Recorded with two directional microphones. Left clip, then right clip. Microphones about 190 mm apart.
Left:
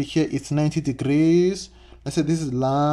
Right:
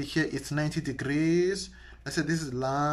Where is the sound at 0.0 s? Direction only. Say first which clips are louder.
Left 6 dB; 15° left (ahead or behind).